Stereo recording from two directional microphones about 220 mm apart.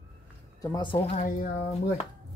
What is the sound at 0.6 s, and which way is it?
Speech, 20° left (ahead or behind).